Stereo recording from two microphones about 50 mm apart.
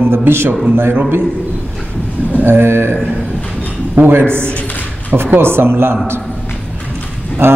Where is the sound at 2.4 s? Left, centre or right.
Right.